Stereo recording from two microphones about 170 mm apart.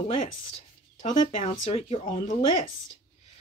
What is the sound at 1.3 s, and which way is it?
Speech, 35° left (ahead or behind).